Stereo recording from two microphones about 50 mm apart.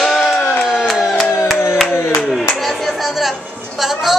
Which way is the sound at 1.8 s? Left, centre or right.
Left.